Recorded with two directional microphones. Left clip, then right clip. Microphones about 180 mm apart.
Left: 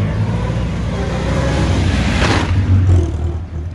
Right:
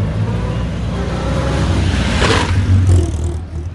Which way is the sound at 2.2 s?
40° right (ahead or behind).